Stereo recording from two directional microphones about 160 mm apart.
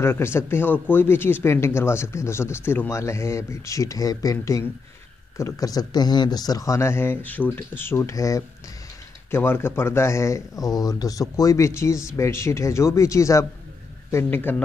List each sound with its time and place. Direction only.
0.0 s speech: 15° left (ahead or behind)